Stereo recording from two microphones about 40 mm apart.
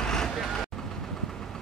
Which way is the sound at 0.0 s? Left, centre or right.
Centre.